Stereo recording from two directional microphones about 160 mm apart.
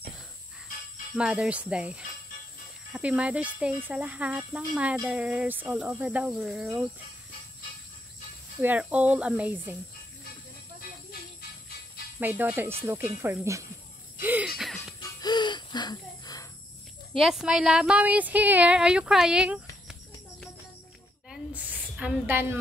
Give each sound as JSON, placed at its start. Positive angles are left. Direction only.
{"t": 1.1, "sound": "speech", "side_deg": -5}
{"t": 8.5, "sound": "speech", "side_deg": -10}
{"t": 12.2, "sound": "speech", "side_deg": -10}
{"t": 14.6, "sound": "music", "side_deg": 0}
{"t": 15.1, "sound": "a sound", "side_deg": 25}
{"t": 17.2, "sound": "speech", "side_deg": -5}
{"t": 21.9, "sound": "speech", "side_deg": -10}